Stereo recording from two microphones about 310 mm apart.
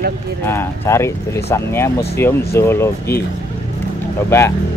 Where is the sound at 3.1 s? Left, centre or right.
Left.